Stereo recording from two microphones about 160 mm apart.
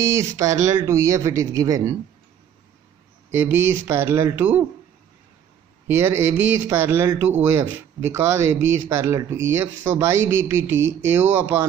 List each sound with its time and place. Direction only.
0.0 s speech: 20° right (ahead or behind)
3.3 s speech: 15° right (ahead or behind)
5.9 s speech: 15° right (ahead or behind)